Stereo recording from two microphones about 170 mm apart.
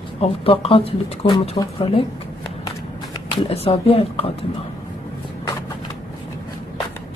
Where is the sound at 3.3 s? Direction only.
35° left (ahead or behind).